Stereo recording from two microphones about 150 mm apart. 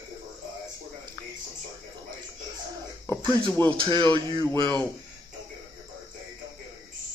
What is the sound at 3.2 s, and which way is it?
Speech, 30° right (ahead or behind).